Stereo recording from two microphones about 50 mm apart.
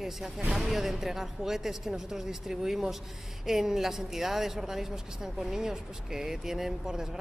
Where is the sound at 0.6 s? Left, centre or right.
Centre.